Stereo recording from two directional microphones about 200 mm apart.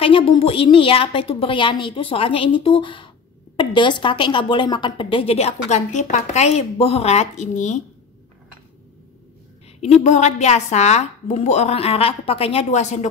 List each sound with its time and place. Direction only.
0.0 s speech: 25° left (ahead or behind)
9.8 s a woman's voice: 30° left (ahead or behind)